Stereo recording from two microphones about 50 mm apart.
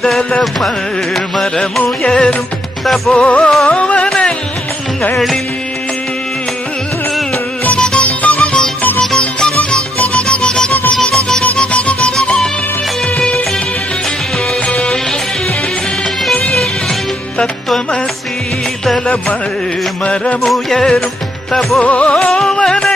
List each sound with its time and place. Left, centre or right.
0.0 s carnatic music: centre
1.1 s music: centre
3.6 s carnatic music: left
5.1 s music: centre
7.6 s music: left
11.5 s music: left
12.2 s music: centre
14.7 s music: left
20.4 s music: centre
21.7 s music: left